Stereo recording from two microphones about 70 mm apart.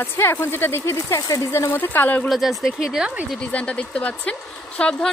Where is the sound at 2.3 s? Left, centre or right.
Centre.